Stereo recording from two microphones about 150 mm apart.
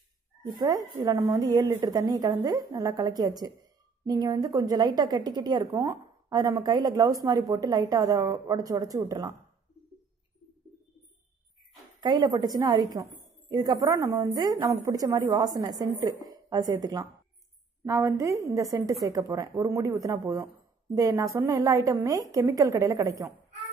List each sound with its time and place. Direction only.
0.4 s a woman's voice: 25° right (ahead or behind)
12.0 s a woman's voice: 30° right (ahead or behind)